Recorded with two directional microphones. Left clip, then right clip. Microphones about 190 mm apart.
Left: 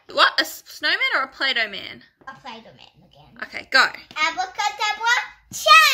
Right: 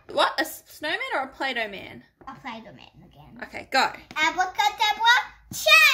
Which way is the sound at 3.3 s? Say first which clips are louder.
Left 6 dB; 5° right (ahead or behind).